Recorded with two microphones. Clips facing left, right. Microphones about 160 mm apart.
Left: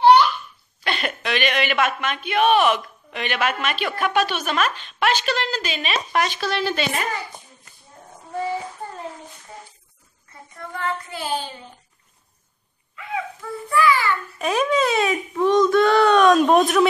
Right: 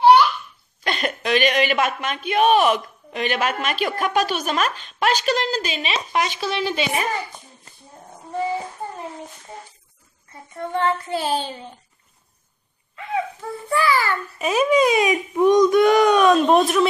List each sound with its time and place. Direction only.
0.8 s speech: 40° right (ahead or behind)
5.8 s a child's voice: 20° right (ahead or behind)
7.7 s a sound: 30° right (ahead or behind)
10.6 s child singing: 30° right (ahead or behind)
13.7 s speech: 35° right (ahead or behind)
14.4 s a child's voice: 5° right (ahead or behind)